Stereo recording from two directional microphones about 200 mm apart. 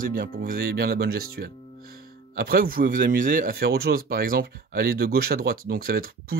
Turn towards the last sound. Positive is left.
turn(degrees=-45)  # may be behind; listen again after turning